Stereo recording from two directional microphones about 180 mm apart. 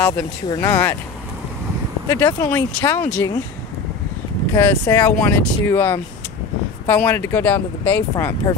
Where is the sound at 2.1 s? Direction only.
15° left (ahead or behind).